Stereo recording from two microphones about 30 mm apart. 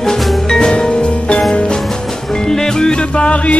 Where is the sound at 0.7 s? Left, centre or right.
Left.